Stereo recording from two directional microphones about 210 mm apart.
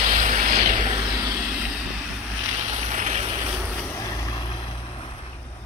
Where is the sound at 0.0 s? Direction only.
35° right (ahead or behind).